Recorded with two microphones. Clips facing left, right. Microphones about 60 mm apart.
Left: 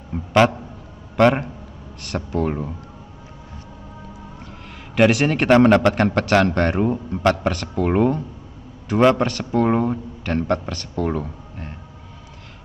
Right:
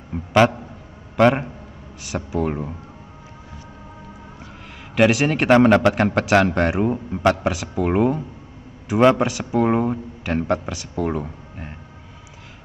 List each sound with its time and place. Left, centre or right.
0.1 s a man's voice: centre
4.9 s a man's voice: centre